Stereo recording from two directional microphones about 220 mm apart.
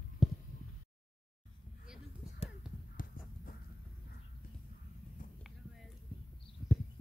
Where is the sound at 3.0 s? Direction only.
40° left (ahead or behind).